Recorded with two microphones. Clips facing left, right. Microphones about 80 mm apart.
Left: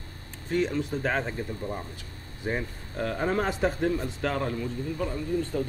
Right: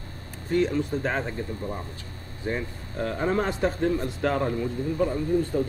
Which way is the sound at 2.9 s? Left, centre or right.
Centre.